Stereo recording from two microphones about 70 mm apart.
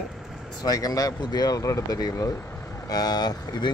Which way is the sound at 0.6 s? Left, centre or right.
Left.